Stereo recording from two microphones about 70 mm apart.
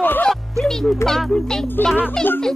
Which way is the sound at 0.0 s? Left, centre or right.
Left.